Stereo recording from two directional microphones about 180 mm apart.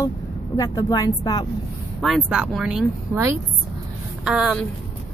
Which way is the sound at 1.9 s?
Centre (ahead or behind).